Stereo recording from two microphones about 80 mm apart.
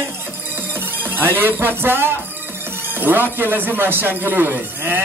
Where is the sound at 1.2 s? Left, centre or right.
Right.